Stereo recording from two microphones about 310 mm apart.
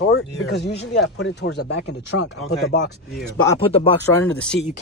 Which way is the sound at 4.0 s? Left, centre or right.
Centre.